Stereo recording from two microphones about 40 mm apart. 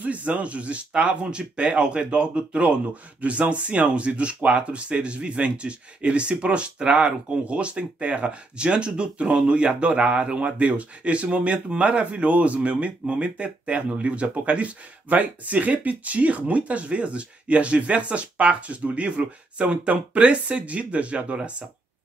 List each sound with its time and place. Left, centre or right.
0.0 s speech: right